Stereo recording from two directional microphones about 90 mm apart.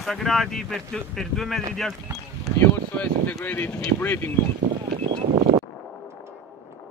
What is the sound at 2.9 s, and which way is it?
Speech, 15° left (ahead or behind).